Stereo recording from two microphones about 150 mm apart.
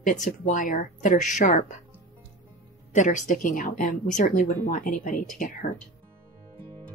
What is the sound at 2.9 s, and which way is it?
Speech, 55° left (ahead or behind).